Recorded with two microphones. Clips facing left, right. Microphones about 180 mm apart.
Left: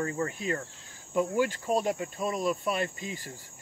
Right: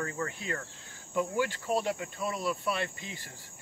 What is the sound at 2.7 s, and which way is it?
Speech, 40° left (ahead or behind).